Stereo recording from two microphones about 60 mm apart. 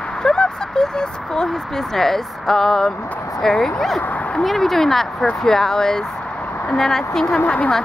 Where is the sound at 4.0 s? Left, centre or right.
Left.